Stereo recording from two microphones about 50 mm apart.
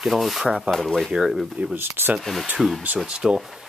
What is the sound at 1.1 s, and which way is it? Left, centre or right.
Speech, centre.